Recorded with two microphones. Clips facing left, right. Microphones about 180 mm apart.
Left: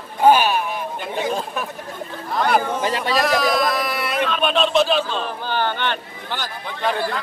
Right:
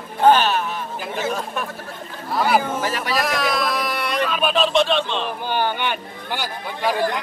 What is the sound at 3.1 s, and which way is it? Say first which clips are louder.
A man's voice: left 4 dB; centre (ahead or behind).